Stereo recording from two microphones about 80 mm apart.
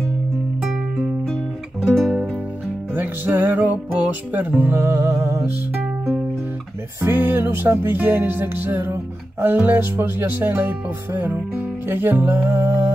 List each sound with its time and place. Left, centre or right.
1.2 s music: centre
2.9 s music: right
7.0 s music: right